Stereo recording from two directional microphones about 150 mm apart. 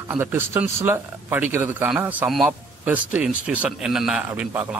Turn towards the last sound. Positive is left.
turn(degrees=-10)  # may be behind; listen again after turning